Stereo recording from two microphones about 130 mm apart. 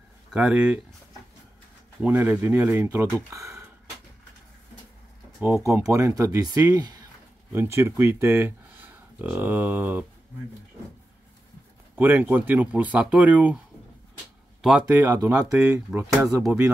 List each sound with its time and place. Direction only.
0.3 s speech: 5° right (ahead or behind)
2.0 s speech: 15° right (ahead or behind)
3.3 s a sound: 20° right (ahead or behind)
5.4 s speech: 20° right (ahead or behind)
11.9 s speech: 15° right (ahead or behind)
14.6 s speech: 5° right (ahead or behind)
15.2 s speech: 25° right (ahead or behind)
15.6 s speech: 10° right (ahead or behind)